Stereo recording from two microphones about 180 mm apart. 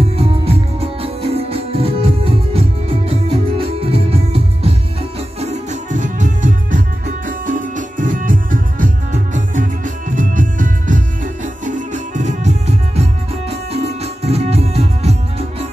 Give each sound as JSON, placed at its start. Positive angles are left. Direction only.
{"t": 0.2, "sound": "music", "side_deg": -35}